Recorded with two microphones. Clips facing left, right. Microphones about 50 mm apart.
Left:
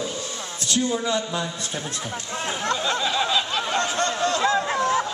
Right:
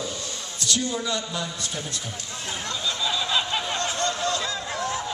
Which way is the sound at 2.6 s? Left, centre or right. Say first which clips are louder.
Left 4 dB; left.